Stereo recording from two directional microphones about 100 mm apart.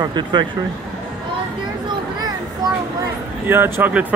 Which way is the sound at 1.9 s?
40° right (ahead or behind).